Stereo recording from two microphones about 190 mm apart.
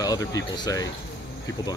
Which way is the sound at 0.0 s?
20° left (ahead or behind).